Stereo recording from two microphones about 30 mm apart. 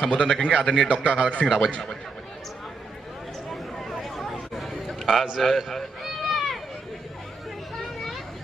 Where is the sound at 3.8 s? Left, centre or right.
Centre.